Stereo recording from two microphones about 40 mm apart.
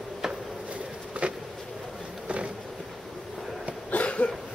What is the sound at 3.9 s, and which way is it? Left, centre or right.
Cough, left.